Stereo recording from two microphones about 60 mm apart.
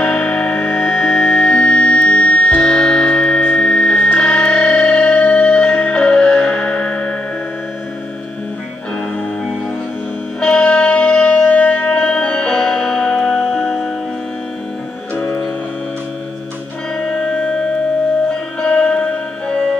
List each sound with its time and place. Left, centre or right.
0.0 s music: centre
10.4 s music: centre
18.3 s music: centre